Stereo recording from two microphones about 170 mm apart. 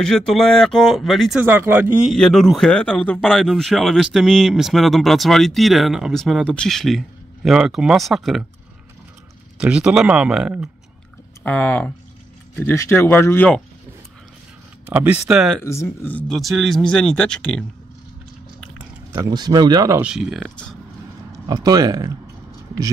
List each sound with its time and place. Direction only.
0.0 s speech: centre (ahead or behind)
1.4 s speech: 10° right (ahead or behind)
2.1 s speech: centre (ahead or behind)
9.6 s speech: 5° right (ahead or behind)
11.4 s speech: 10° left (ahead or behind)
14.9 s speech: 10° right (ahead or behind)
15.6 s speech: 15° left (ahead or behind)
18.8 s speech: 20° right (ahead or behind)
20.0 s speech: 5° right (ahead or behind)
21.3 s speech: 20° right (ahead or behind)